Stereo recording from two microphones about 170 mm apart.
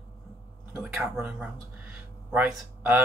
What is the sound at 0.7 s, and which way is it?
Speech, 15° right (ahead or behind).